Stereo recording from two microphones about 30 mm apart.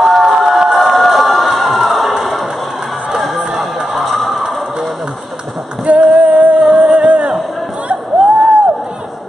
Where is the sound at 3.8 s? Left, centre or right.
Centre.